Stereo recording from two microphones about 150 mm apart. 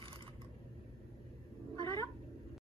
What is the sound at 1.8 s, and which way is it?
Cat, 20° left (ahead or behind).